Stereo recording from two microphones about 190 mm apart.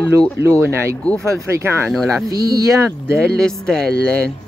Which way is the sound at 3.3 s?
5° left (ahead or behind).